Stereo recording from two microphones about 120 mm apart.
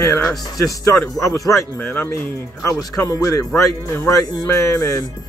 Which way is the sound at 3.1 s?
30° left (ahead or behind).